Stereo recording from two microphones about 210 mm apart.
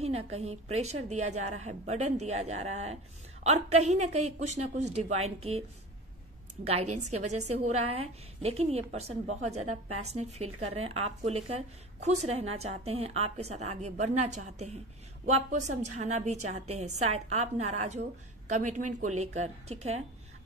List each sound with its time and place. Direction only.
0.0 s a woman's voice: 30° right (ahead or behind)
6.6 s a woman's voice: 30° right (ahead or behind)